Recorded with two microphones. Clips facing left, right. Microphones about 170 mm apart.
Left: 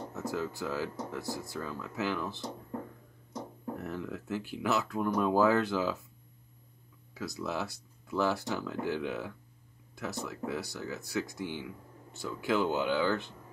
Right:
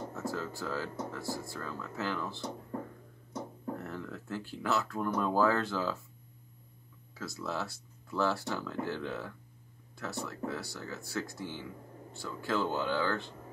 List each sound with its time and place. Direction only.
0.1 s speech: 15° left (ahead or behind)
3.7 s speech: 15° left (ahead or behind)
7.2 s speech: 15° left (ahead or behind)